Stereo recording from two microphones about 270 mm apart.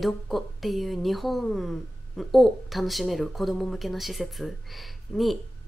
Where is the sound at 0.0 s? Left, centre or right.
Centre.